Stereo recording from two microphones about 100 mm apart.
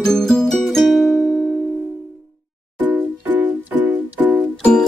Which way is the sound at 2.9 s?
15° right (ahead or behind).